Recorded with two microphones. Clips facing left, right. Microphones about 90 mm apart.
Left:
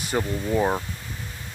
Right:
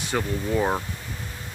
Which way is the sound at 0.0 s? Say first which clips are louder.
Left 1 dB; 5° left (ahead or behind).